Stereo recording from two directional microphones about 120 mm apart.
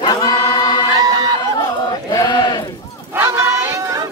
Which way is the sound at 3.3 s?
30° right (ahead or behind).